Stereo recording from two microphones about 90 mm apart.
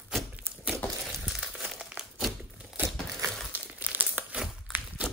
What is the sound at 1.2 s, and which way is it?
Crumpling, 5° right (ahead or behind).